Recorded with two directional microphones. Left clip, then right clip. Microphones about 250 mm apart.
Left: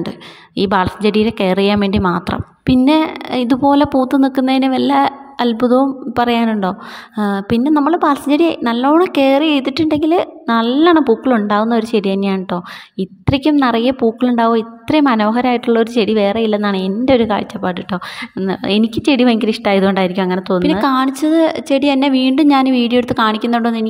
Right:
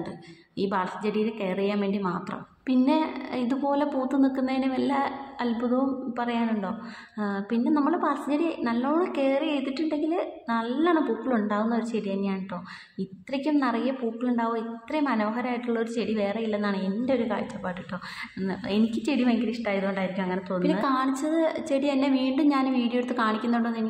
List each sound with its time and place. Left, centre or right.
0.6 s a woman's voice: left